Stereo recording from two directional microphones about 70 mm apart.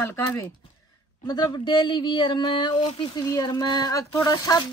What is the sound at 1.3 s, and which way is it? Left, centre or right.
Speech, left.